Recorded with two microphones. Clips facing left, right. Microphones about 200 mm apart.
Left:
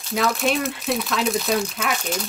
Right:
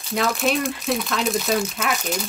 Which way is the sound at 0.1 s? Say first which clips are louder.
Even; centre (ahead or behind).